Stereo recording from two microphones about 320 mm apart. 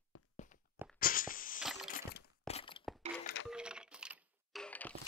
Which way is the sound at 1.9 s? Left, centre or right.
Left.